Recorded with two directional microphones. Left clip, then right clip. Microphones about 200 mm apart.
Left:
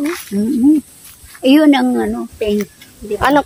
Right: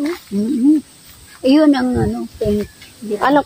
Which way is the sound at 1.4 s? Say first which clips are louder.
Left 2 dB; 65° left (ahead or behind).